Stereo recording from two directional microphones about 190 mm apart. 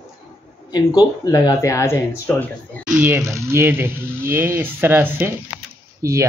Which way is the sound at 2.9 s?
10° right (ahead or behind).